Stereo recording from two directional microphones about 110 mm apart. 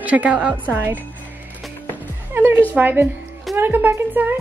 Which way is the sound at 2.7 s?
15° right (ahead or behind).